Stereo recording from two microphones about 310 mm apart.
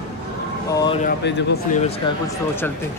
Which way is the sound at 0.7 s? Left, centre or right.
Centre.